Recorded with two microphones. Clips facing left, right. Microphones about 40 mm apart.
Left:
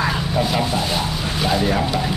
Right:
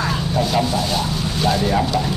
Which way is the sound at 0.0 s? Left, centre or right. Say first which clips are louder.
Even; centre.